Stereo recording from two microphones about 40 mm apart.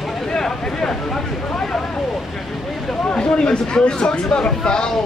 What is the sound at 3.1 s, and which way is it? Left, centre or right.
Speech, left.